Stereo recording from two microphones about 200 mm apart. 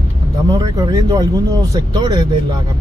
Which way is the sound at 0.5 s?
20° right (ahead or behind).